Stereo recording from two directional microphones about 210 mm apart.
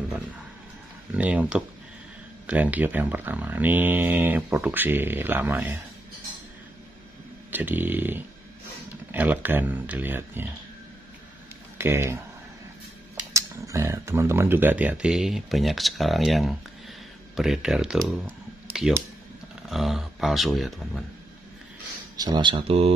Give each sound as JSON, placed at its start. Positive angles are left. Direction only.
{"t": 1.1, "sound": "speech", "side_deg": -5}
{"t": 7.5, "sound": "speech", "side_deg": -10}
{"t": 11.8, "sound": "speech", "side_deg": -10}
{"t": 13.3, "sound": "speech", "side_deg": -15}
{"t": 22.1, "sound": "speech", "side_deg": -20}